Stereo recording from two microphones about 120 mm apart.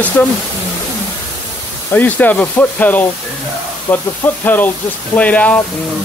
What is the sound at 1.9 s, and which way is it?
Speech, 15° left (ahead or behind).